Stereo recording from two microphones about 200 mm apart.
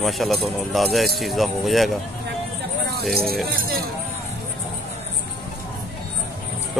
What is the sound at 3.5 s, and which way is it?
Speech, 45° right (ahead or behind).